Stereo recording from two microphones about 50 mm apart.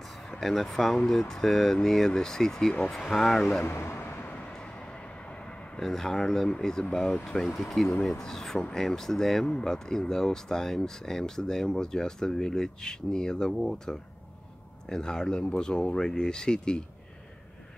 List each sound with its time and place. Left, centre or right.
0.4 s speech: centre
3.6 s speech: left
4.5 s vehicle: centre
5.8 s speech: centre